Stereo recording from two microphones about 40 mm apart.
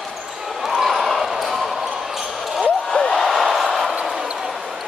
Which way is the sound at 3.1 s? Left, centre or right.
Centre.